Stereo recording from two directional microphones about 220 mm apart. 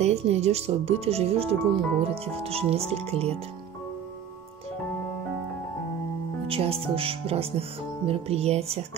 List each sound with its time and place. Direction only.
0.0 s speech: 30° right (ahead or behind)
6.4 s speech: 25° right (ahead or behind)